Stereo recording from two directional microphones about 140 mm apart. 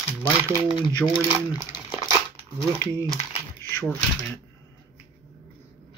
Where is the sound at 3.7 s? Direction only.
15° left (ahead or behind).